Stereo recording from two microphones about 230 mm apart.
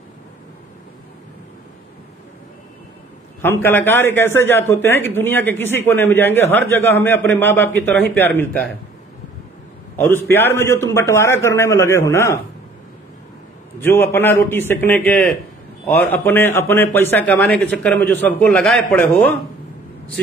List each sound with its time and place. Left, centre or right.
3.6 s a man's voice: centre
9.9 s a man's voice: centre
13.7 s a man's voice: centre